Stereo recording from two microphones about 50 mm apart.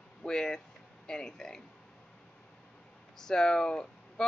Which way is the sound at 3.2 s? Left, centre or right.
Centre.